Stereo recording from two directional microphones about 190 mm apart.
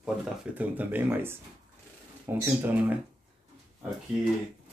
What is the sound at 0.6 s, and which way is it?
Speech, 10° right (ahead or behind).